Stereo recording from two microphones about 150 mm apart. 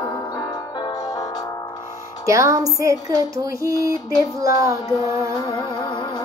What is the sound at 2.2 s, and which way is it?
Speech, 20° right (ahead or behind).